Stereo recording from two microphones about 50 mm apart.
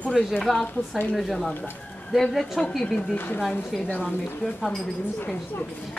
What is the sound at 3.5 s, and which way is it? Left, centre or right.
Speech, left.